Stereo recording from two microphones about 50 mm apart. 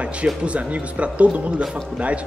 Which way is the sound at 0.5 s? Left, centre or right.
Right.